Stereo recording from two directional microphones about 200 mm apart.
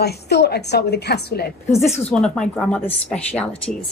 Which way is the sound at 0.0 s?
55° left (ahead or behind).